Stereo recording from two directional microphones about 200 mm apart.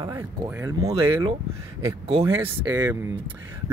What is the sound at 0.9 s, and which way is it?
Speech, 15° right (ahead or behind).